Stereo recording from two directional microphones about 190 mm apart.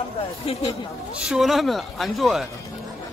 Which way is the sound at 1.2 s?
Centre (ahead or behind).